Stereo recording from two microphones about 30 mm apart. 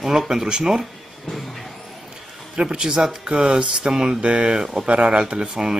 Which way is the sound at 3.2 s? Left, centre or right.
Right.